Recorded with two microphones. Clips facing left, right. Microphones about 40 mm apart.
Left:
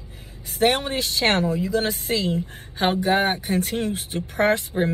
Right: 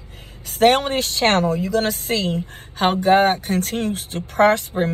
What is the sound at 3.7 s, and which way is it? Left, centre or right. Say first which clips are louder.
Speech: right 2 dB; right.